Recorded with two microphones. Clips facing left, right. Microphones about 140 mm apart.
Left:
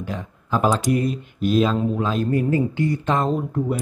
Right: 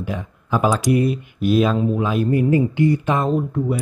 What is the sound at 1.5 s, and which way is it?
Speech, 10° right (ahead or behind).